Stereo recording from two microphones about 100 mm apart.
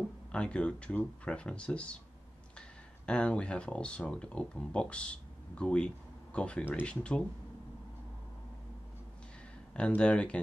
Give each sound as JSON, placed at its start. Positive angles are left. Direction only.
{"t": 0.3, "sound": "speech", "side_deg": 10}
{"t": 3.1, "sound": "speech", "side_deg": 10}
{"t": 9.8, "sound": "speech", "side_deg": 10}